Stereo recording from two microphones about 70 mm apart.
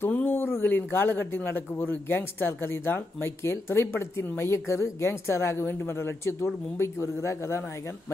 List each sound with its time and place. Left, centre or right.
0.1 s a man's voice: left